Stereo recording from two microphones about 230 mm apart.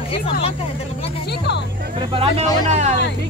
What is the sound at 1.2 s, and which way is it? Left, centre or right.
Speech, left.